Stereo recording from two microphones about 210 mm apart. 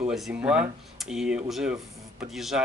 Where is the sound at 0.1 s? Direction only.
5° right (ahead or behind).